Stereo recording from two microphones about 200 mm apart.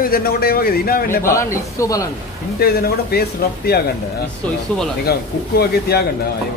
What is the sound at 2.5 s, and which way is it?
Speech, 50° left (ahead or behind).